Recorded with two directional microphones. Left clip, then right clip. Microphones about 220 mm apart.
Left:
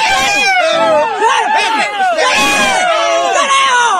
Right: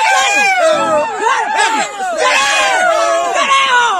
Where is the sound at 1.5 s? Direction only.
55° right (ahead or behind).